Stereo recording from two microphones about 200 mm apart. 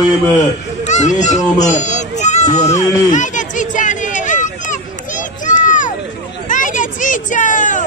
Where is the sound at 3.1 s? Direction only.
40° left (ahead or behind).